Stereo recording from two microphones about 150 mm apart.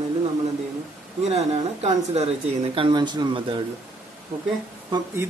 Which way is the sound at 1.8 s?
45° right (ahead or behind).